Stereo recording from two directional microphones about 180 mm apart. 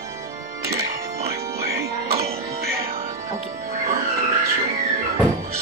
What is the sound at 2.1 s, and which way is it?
Music, 35° right (ahead or behind).